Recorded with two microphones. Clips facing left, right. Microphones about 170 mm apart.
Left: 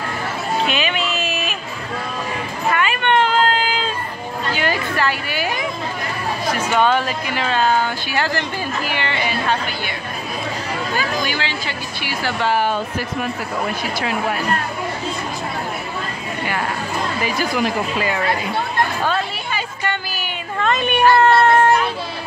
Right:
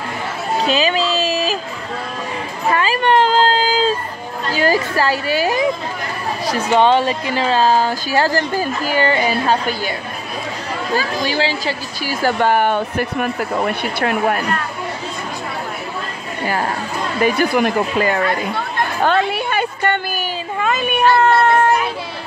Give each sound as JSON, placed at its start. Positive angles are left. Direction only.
{"t": 0.7, "sound": "music", "side_deg": -35}
{"t": 2.7, "sound": "a sound", "side_deg": -35}
{"t": 6.4, "sound": "speech", "side_deg": -30}
{"t": 11.2, "sound": "a woman's voice", "side_deg": -35}
{"t": 17.2, "sound": "a woman's voice", "side_deg": -55}
{"t": 19.0, "sound": "a sound", "side_deg": -60}
{"t": 20.5, "sound": "child singing", "side_deg": -5}